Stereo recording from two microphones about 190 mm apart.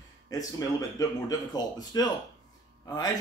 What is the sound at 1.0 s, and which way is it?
A man's voice, 20° left (ahead or behind).